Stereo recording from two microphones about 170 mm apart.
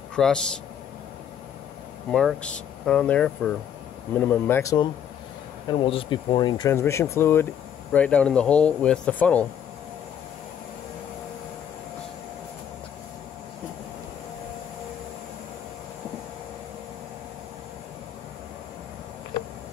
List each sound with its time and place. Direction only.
0.1 s speech: 5° left (ahead or behind)
2.0 s speech: 5° left (ahead or behind)
5.7 s speech: 30° left (ahead or behind)
6.7 s speech: 15° left (ahead or behind)